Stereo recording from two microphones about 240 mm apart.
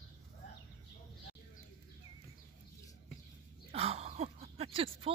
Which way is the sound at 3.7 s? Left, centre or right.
Right.